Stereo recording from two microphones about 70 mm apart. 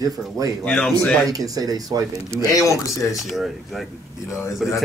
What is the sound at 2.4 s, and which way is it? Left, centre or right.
Speech, left.